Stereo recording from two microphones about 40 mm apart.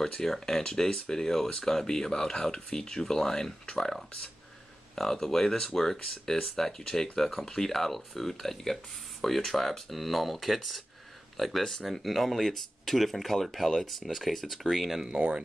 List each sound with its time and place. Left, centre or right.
0.0 s speech: centre
15.1 s speech: right